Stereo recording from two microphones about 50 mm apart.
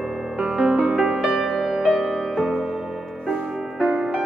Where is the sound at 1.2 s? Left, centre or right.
Centre.